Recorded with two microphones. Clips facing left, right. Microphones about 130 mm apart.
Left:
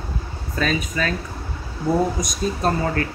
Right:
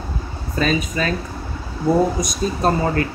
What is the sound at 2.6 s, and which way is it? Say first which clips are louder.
Speech: right 4 dB; 5° right (ahead or behind).